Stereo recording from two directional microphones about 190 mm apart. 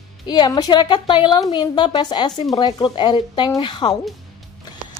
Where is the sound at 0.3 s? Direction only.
20° left (ahead or behind).